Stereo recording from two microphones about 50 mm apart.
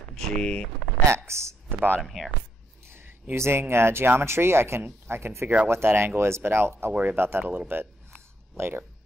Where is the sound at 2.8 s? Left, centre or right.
Right.